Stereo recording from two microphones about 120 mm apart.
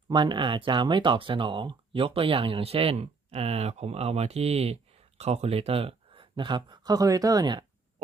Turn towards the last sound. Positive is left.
turn(degrees=-35)  # may be behind; listen again after turning